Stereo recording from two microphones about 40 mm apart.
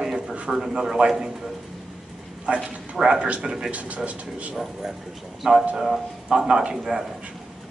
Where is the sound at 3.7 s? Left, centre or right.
Right.